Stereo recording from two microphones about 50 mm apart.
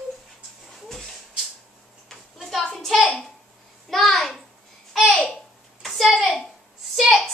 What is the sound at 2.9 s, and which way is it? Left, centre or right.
Hands, centre.